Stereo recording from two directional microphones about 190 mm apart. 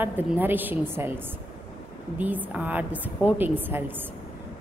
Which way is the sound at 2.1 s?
10° right (ahead or behind).